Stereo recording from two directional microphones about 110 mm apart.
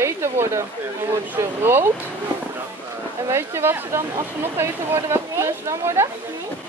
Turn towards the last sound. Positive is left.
turn(degrees=-25)  # may be behind; listen again after turning